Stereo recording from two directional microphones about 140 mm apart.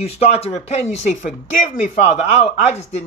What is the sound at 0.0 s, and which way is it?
Speech, 45° left (ahead or behind).